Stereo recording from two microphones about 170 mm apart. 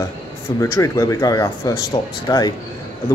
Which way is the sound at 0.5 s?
20° left (ahead or behind).